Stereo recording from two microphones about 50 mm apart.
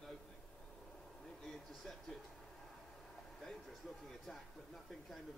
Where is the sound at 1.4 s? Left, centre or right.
Centre.